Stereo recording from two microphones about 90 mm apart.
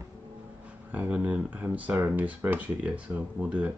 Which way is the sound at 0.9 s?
15° right (ahead or behind).